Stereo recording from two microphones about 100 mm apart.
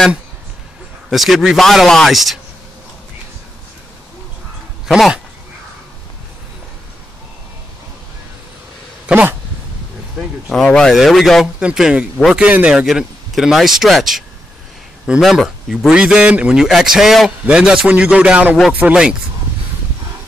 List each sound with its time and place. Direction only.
1.1 s speech: centre (ahead or behind)
4.8 s speech: 5° right (ahead or behind)
9.0 s speech: 20° right (ahead or behind)
10.5 s speech: 5° left (ahead or behind)
11.6 s a man's voice: 10° right (ahead or behind)